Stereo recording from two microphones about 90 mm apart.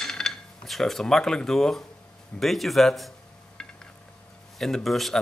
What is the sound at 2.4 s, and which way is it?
Speech, centre (ahead or behind).